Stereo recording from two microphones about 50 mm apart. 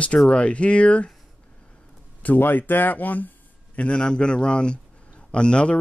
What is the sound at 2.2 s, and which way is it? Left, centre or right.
Speech, left.